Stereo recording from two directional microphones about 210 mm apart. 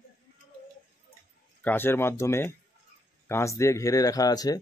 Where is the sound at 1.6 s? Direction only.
10° left (ahead or behind).